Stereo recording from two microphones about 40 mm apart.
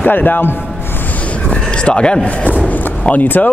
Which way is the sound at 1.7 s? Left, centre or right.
Left.